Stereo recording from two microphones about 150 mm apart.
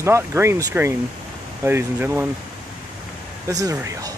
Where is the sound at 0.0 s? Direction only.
15° right (ahead or behind).